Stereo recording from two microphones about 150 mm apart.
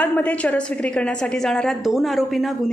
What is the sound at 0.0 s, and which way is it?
A woman's voice, 10° left (ahead or behind).